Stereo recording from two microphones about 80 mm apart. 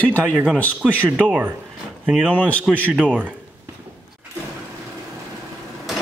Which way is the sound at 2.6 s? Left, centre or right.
Centre.